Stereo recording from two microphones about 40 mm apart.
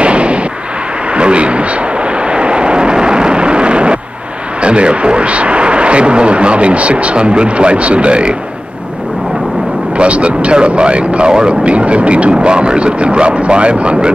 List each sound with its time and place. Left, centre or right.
0.0 s artillery fire: right
1.1 s vehicle: right
4.6 s speech: right
9.9 s speech: right